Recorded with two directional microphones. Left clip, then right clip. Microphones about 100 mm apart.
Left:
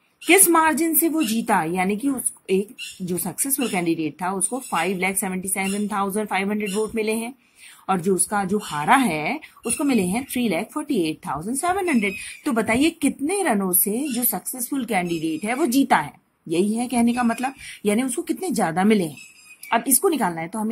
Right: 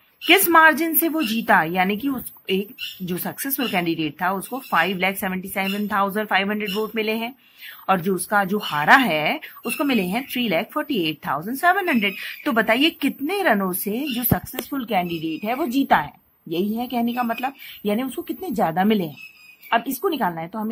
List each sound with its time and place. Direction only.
0.3 s speech: 25° left (ahead or behind)
4.5 s speech: centre (ahead or behind)
4.7 s speech: 30° left (ahead or behind)
7.8 s speech: 15° left (ahead or behind); by 20.7 s 30° left (ahead or behind)